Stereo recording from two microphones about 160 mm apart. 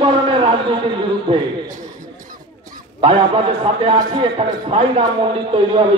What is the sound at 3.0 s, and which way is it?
A man's voice, 35° right (ahead or behind).